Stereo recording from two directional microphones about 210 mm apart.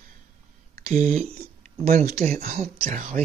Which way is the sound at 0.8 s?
35° right (ahead or behind).